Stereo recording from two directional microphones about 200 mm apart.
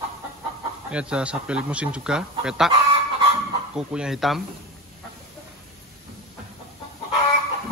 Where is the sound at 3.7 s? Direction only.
5° right (ahead or behind).